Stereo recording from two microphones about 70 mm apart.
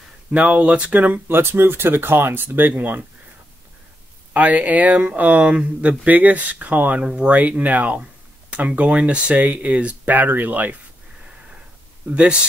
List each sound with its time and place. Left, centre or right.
0.3 s speech: centre
4.3 s speech: right
12.1 s speech: centre